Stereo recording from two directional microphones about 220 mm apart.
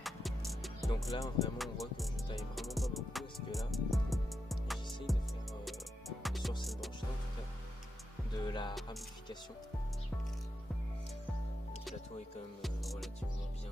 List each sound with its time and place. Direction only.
0.5 s music: centre (ahead or behind)
8.4 s speech: 20° left (ahead or behind)
12.6 s music: centre (ahead or behind)